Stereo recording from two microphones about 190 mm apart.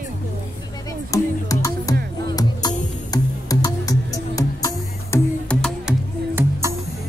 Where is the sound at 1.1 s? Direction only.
15° left (ahead or behind).